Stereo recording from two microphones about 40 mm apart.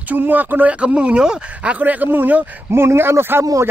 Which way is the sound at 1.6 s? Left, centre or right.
Right.